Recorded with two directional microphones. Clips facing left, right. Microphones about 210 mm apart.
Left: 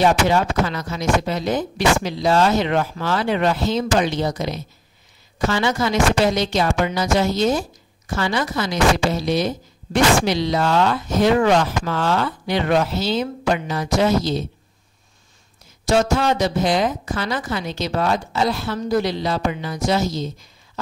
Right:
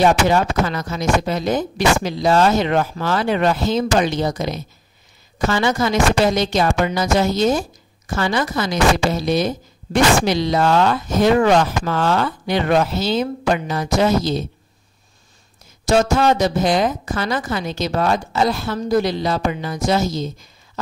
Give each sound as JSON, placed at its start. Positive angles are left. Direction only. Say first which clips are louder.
{"t": 0.0, "sound": "a woman's voice", "louder": "right 2 dB", "side_deg": -45}
{"t": 15.8, "sound": "a woman's voice", "louder": "right 2 dB", "side_deg": -45}